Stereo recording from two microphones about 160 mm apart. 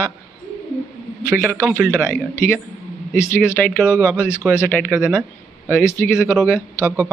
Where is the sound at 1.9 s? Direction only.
15° left (ahead or behind).